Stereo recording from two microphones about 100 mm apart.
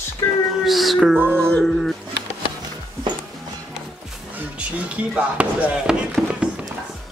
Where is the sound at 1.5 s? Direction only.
5° left (ahead or behind).